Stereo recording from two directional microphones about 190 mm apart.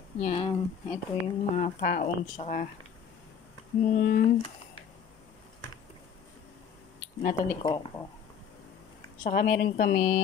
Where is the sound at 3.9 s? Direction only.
45° left (ahead or behind).